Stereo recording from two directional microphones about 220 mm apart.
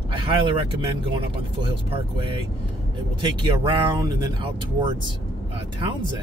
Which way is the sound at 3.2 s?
20° right (ahead or behind).